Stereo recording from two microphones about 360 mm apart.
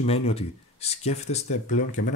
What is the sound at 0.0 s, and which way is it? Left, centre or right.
Speech, centre.